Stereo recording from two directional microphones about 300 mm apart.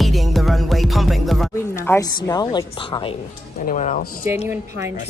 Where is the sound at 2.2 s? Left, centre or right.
Centre.